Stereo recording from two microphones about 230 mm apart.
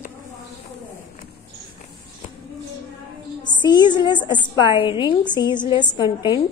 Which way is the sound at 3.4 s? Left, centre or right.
Centre.